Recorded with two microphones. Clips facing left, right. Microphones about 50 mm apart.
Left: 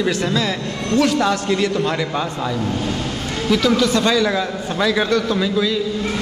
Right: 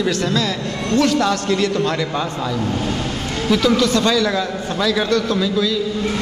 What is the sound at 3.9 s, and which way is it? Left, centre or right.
A man's voice, centre.